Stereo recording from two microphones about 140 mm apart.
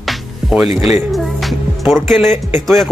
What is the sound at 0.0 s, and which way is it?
Music, centre (ahead or behind).